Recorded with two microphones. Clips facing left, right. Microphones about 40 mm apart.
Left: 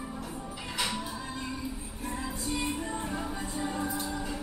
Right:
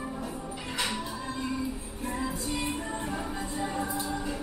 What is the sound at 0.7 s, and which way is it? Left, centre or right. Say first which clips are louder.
Music: right 1 dB; centre.